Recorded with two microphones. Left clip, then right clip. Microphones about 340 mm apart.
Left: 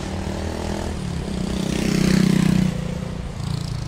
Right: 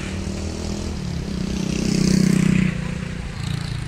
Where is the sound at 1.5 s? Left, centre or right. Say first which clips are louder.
Left 1 dB; left.